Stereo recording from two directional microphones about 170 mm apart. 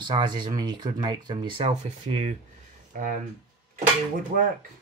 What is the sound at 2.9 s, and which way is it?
Speech, 55° right (ahead or behind).